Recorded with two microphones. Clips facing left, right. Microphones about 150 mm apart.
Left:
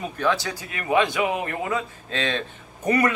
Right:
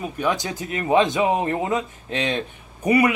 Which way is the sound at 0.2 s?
20° right (ahead or behind).